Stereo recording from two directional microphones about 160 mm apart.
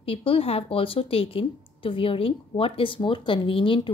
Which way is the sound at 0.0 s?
35° left (ahead or behind).